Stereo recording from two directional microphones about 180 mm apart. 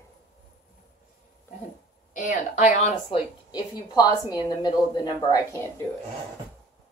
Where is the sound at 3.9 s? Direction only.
20° left (ahead or behind).